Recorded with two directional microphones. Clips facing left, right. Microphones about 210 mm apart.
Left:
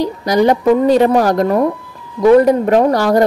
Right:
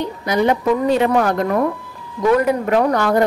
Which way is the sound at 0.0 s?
35° left (ahead or behind).